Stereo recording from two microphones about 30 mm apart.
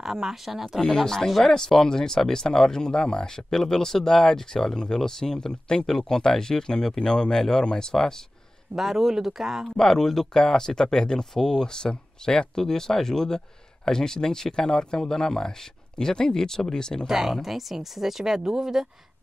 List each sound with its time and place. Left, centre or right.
0.0 s speech: centre
0.7 s speech: centre
8.7 s speech: centre
9.7 s speech: centre
17.1 s speech: centre